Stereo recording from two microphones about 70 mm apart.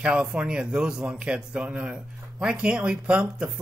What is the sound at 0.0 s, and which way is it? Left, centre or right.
Speech, centre.